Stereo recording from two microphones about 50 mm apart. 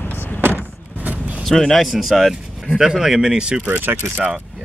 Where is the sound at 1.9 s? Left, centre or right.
Centre.